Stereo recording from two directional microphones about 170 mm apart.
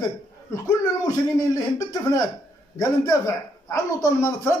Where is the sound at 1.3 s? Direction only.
20° left (ahead or behind).